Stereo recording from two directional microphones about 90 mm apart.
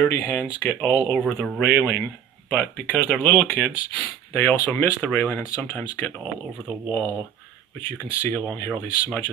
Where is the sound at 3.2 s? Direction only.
20° left (ahead or behind).